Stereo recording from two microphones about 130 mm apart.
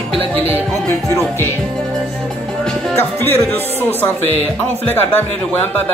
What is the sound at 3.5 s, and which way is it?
Speech, 15° left (ahead or behind).